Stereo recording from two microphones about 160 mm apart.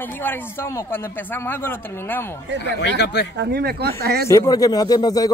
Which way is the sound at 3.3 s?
80° right.